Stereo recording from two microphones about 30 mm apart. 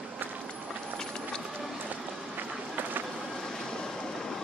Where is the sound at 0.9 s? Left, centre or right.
Left.